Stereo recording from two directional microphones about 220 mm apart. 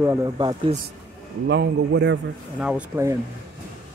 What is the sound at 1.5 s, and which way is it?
Speech, 50° right (ahead or behind).